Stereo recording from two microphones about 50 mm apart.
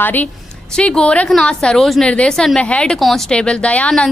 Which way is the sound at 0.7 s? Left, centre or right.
Centre.